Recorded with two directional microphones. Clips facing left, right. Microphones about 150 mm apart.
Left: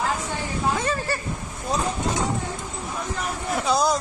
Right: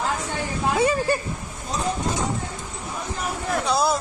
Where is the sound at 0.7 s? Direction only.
15° right (ahead or behind).